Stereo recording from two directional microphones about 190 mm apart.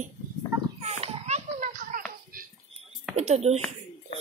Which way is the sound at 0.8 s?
35° right (ahead or behind).